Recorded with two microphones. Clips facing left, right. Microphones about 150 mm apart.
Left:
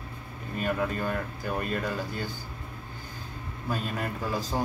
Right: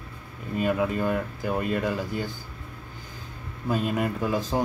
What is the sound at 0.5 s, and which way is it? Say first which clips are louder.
Speech: right 4 dB; 15° right (ahead or behind).